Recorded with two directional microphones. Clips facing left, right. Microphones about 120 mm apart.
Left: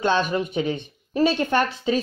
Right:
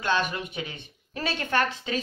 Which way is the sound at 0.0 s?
25° left (ahead or behind).